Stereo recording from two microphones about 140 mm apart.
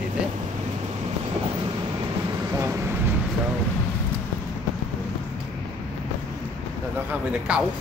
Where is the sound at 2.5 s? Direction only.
15° right (ahead or behind).